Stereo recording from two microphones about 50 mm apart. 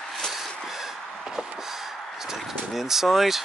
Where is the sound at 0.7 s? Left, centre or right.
Centre.